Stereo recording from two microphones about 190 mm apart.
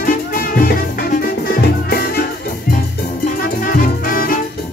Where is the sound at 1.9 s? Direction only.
55° left (ahead or behind).